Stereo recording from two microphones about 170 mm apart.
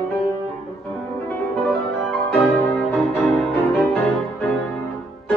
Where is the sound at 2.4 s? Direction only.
Centre (ahead or behind).